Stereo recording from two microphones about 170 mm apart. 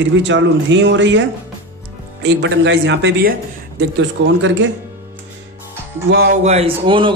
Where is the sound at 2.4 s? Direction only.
90° right.